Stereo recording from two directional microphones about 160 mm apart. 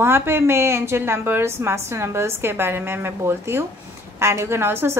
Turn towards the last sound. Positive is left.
turn(degrees=-15)  # may be behind; listen again after turning